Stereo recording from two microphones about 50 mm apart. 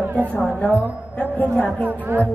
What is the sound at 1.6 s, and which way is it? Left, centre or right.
Speech, right.